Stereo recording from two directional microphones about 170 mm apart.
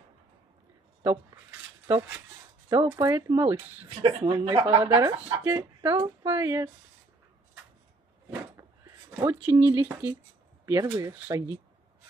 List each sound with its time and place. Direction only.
2.7 s speech: 25° right (ahead or behind)
9.2 s speech: 15° right (ahead or behind)